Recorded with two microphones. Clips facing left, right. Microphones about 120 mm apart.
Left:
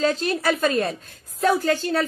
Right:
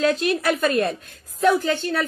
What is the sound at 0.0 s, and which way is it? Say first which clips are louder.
A woman's voice: right 1 dB; 30° left (ahead or behind).